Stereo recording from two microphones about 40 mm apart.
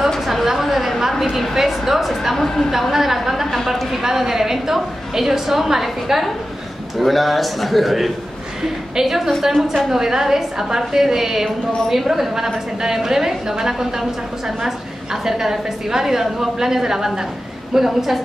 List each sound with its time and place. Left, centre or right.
0.3 s a woman's voice: centre
2.3 s a woman's voice: centre
2.7 s a woman's voice: centre
15.2 s a woman's voice: centre